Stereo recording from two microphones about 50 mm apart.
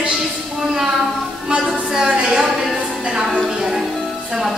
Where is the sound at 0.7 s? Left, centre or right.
Centre.